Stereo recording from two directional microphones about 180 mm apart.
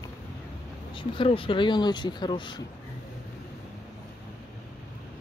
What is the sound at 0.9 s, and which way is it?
Speech, 30° left (ahead or behind).